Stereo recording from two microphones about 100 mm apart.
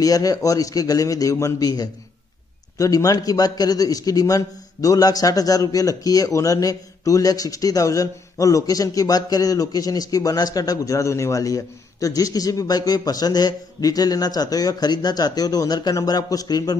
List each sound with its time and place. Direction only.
0.0 s a man's voice: 35° left (ahead or behind)